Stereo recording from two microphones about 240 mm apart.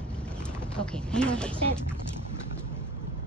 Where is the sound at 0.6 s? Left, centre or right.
Centre.